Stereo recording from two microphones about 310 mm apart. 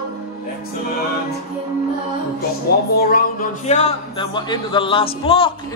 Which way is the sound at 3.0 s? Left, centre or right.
Left.